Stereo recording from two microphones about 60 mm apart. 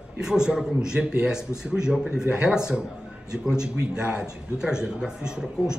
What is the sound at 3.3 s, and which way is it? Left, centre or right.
A man's voice, centre.